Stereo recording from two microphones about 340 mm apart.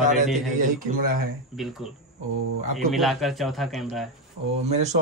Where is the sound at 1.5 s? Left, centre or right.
Centre.